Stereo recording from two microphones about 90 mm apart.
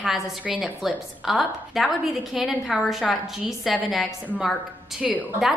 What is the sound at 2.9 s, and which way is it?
A woman's voice, centre (ahead or behind).